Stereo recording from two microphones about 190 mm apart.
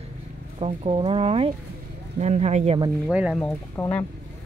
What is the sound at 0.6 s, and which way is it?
Speech, 30° right (ahead or behind).